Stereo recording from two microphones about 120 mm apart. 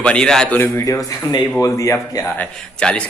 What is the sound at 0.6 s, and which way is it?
Speech, 20° left (ahead or behind).